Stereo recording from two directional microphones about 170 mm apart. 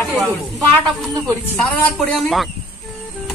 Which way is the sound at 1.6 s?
5° left (ahead or behind).